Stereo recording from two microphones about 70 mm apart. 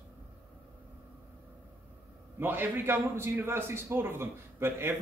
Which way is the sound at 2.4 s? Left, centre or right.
Right.